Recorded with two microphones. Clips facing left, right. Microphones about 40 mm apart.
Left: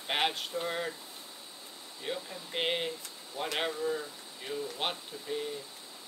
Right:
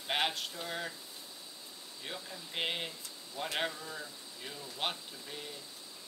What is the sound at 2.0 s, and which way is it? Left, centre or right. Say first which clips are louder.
Speech: left 6 dB; centre.